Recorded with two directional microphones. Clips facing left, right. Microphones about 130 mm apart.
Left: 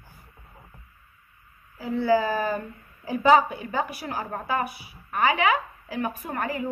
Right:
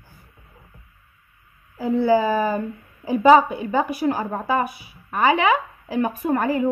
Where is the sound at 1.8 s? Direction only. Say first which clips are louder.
Right 4 dB; 20° right (ahead or behind).